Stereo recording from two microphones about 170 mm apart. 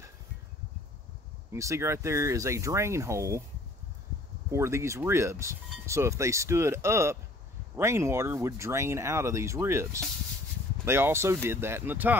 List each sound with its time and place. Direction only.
1.5 s speech: 15° right (ahead or behind)
4.5 s speech: 15° right (ahead or behind)